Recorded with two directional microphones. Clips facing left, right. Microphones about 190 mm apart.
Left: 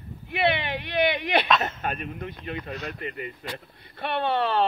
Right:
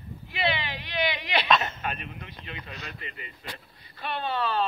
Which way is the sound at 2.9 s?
50° left (ahead or behind).